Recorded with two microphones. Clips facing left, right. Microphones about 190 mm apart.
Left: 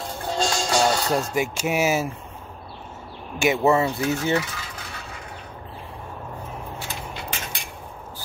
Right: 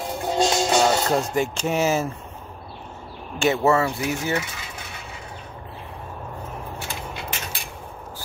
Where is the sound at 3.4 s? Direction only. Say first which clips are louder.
Even; 15° left (ahead or behind).